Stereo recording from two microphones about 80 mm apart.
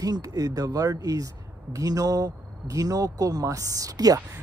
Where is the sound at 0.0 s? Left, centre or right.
Right.